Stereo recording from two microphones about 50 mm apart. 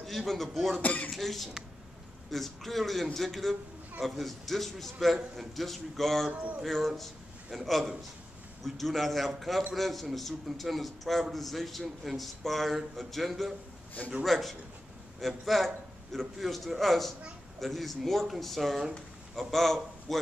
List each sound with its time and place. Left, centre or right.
0.0 s a man's voice: centre
0.8 s speech: left
1.1 s a man's voice: centre
6.3 s a sound: right
6.6 s a man's voice: centre